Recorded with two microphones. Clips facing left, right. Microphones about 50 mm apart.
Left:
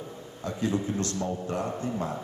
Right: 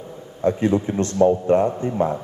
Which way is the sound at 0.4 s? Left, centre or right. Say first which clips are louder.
Right 10 dB; right.